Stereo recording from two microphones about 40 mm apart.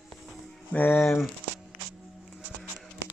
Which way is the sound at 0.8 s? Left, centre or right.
Left.